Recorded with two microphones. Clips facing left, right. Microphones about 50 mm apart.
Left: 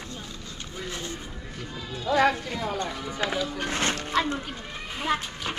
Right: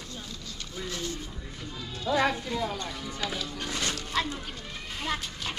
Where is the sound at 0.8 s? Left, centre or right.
Left.